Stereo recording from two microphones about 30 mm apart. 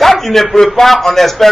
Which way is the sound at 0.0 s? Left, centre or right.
Centre.